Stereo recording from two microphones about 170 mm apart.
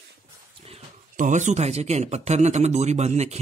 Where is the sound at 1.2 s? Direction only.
45° right (ahead or behind).